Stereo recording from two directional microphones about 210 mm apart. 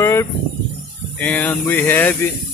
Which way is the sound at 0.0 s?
15° left (ahead or behind).